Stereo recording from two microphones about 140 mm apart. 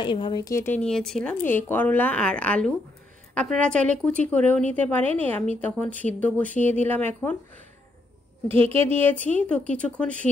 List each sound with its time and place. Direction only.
0.0 s speech: 35° left (ahead or behind)
0.4 s speech: 20° left (ahead or behind)
0.7 s speech: 5° left (ahead or behind)
1.4 s speech: 15° left (ahead or behind)
8.7 s speech: 15° left (ahead or behind)